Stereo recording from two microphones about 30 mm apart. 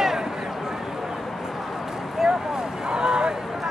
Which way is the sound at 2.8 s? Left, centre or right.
Right.